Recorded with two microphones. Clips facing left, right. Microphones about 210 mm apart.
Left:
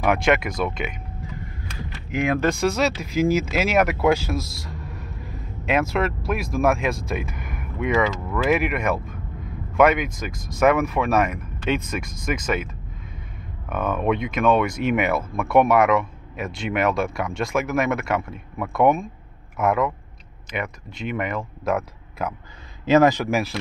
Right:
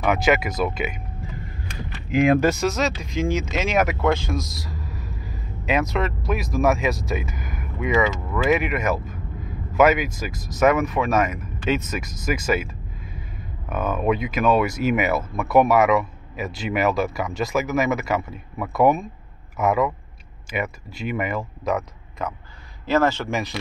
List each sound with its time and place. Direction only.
0.0 s speech: centre (ahead or behind)
2.1 s speech: 25° right (ahead or behind)
2.4 s speech: 5° right (ahead or behind)
13.7 s a man's voice: 5° right (ahead or behind)
22.8 s a man's voice: 15° left (ahead or behind)